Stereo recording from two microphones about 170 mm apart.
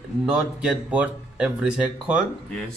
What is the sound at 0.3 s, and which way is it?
Speech, 5° right (ahead or behind).